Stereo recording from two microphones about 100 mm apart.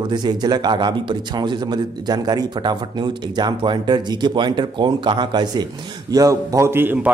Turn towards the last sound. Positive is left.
turn(degrees=-20)  # may be behind; listen again after turning